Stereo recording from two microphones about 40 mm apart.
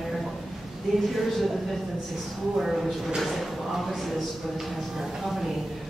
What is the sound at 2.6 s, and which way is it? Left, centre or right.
Speech, centre.